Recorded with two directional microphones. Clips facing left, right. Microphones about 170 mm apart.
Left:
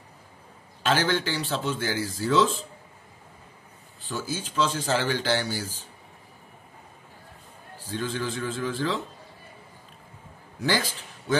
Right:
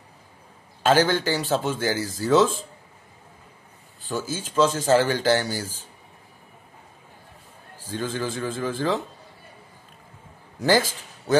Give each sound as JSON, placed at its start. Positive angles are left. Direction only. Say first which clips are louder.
{"t": 0.8, "sound": "speech", "louder": "right 5 dB", "side_deg": -45}
{"t": 4.3, "sound": "speech", "louder": "right 5 dB", "side_deg": -45}
{"t": 7.9, "sound": "speech", "louder": "right 2 dB", "side_deg": -45}
{"t": 10.6, "sound": "a man's voice", "louder": "right 6 dB", "side_deg": -45}